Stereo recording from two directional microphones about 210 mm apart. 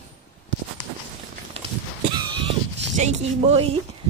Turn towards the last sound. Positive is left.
turn(degrees=-30)  # may be behind; listen again after turning